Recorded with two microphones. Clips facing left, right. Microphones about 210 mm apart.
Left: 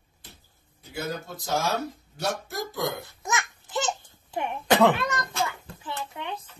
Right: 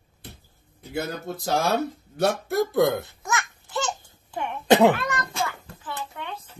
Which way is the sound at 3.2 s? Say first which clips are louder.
Left 3 dB; 20° left (ahead or behind).